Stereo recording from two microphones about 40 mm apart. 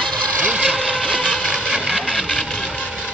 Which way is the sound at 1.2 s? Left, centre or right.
Left.